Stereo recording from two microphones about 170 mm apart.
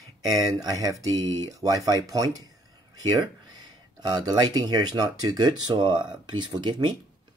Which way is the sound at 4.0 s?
25° right (ahead or behind).